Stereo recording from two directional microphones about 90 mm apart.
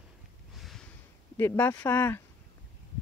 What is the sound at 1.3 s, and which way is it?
Speech, 20° left (ahead or behind).